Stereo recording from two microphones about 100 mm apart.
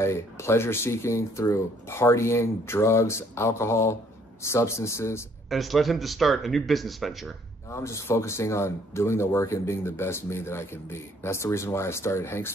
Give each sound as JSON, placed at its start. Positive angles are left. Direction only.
{"t": 0.0, "sound": "speech", "side_deg": 25}
{"t": 5.5, "sound": "speech", "side_deg": 0}
{"t": 7.7, "sound": "speech", "side_deg": 30}